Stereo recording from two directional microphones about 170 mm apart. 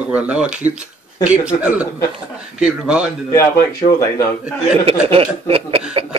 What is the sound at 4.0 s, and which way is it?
Speech, 15° left (ahead or behind).